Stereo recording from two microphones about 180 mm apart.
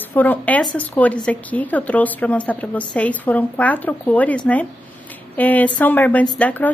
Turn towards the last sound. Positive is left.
turn(degrees=10)  # may be behind; listen again after turning